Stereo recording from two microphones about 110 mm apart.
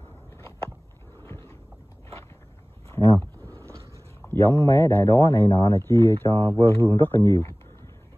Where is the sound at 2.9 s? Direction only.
20° left (ahead or behind).